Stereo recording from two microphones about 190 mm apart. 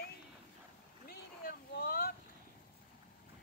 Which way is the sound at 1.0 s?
55° left (ahead or behind).